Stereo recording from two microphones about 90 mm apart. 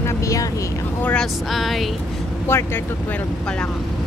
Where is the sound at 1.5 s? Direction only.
Centre (ahead or behind).